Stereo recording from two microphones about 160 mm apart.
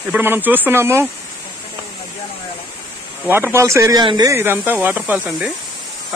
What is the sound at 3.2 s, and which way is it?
Speech, 15° right (ahead or behind).